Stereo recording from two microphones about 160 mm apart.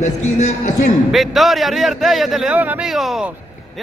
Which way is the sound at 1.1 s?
Centre (ahead or behind).